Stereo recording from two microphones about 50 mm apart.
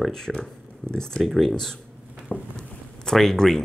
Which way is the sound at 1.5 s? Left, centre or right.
Centre.